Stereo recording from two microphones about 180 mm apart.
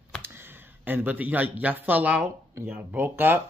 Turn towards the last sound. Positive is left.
turn(degrees=-10)  # may be behind; listen again after turning